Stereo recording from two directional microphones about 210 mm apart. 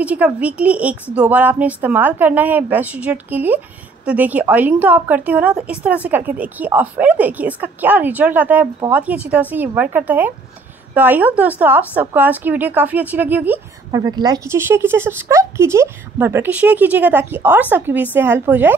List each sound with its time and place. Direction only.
0.0 s a woman's voice: 5° right (ahead or behind)